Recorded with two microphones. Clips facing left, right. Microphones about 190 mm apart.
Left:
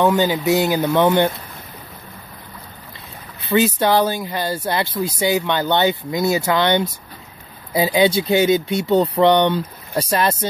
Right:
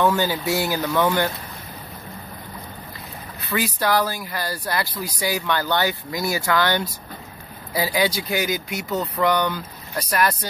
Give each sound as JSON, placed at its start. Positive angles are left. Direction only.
{"t": 0.0, "sound": "speech", "side_deg": 20}
{"t": 3.4, "sound": "speech", "side_deg": 25}